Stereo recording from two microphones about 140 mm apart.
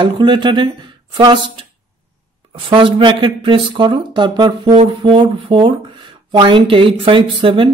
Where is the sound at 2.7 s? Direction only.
35° right (ahead or behind).